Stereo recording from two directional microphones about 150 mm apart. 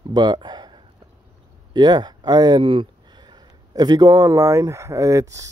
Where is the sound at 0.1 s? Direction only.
30° right (ahead or behind).